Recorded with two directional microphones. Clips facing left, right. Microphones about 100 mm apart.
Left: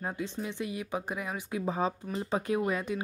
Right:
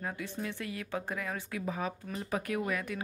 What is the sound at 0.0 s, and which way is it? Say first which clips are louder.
Speech: left 2 dB; 20° left (ahead or behind).